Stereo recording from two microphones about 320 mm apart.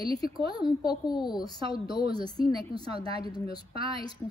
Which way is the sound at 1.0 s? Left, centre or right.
Centre.